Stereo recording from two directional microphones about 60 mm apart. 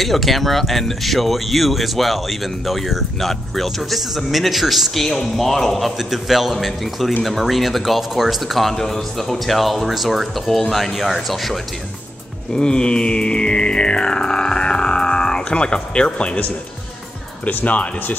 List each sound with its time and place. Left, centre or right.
0.0 s speech: centre
12.5 s music: centre
17.5 s speech: left